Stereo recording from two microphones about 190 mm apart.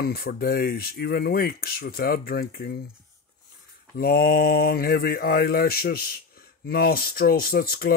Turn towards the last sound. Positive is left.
turn(degrees=50)  # may be behind; listen again after turning